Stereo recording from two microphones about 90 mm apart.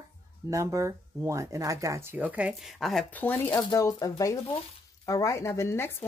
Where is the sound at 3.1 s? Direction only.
20° left (ahead or behind).